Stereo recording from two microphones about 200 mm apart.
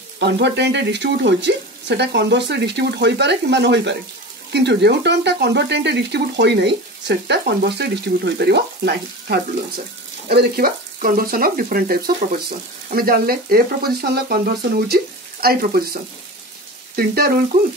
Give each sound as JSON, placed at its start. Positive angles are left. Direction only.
{"t": 0.2, "sound": "speech", "side_deg": -60}